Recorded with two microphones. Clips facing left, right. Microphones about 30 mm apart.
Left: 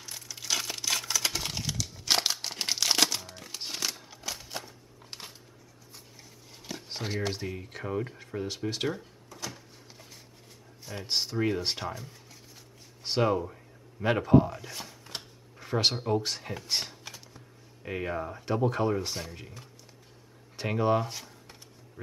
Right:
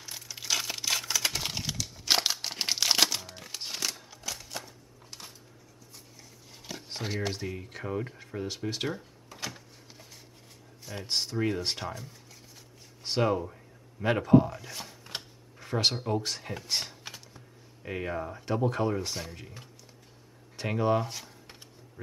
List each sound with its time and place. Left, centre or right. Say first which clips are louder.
0.0 s crumpling: even; centre
5.1 s a sound: left 3 dB; left
6.6 s speech: left 1 dB; centre
10.9 s speech: left 1 dB; centre
20.5 s speech: left 1 dB; centre